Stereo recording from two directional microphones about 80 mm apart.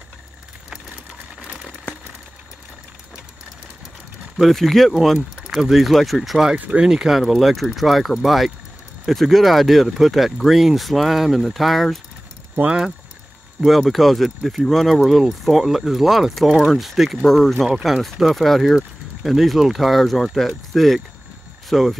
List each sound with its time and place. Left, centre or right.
4.4 s speech: centre
12.5 s speech: centre
13.6 s speech: centre